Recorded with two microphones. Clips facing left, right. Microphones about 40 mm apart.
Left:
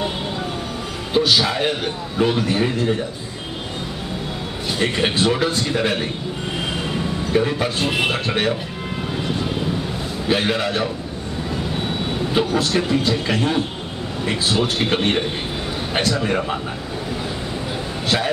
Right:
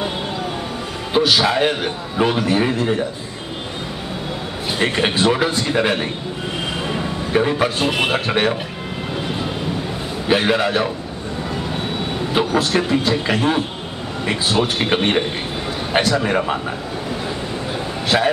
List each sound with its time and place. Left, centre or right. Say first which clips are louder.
1.2 s a man's voice: right 4 dB; centre
4.6 s a man's voice: right 2 dB; centre
7.3 s a man's voice: right 3 dB; centre
10.2 s a man's voice: right 3 dB; centre
12.4 s a man's voice: right 2 dB; centre
18.1 s a man's voice: right 5 dB; centre